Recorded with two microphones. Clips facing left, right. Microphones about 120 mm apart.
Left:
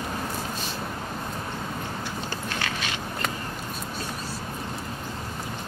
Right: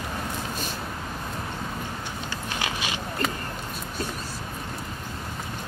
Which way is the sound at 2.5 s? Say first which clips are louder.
Right 3 dB; 15° right (ahead or behind).